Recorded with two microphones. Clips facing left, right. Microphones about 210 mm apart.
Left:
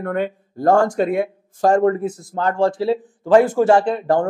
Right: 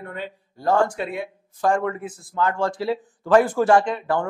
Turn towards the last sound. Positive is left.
turn(degrees=40)  # may be behind; listen again after turning